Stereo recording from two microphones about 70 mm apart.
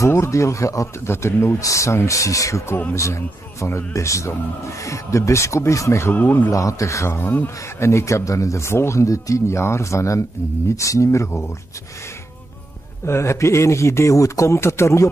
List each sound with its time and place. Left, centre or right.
0.0 s a man's voice: left
6.1 s a man's voice: left
6.5 s a man's voice: left
13.0 s a man's voice: left